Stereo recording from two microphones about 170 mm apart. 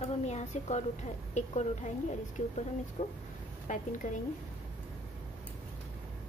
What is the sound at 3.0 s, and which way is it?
A woman's voice, 45° left (ahead or behind).